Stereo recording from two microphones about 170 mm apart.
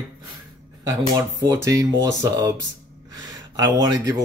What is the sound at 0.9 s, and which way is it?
Speech, 15° right (ahead or behind).